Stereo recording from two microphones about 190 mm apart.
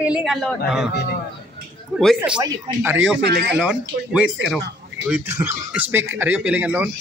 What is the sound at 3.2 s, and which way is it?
Speech, 60° right (ahead or behind).